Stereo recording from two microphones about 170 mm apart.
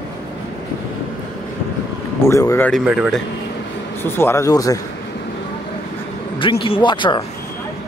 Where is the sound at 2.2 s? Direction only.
15° left (ahead or behind).